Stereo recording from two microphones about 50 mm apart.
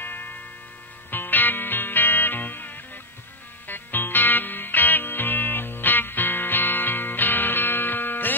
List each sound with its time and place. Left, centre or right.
0.0 s music: left